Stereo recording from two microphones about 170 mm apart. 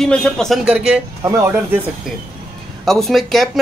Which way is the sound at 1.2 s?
15° right (ahead or behind).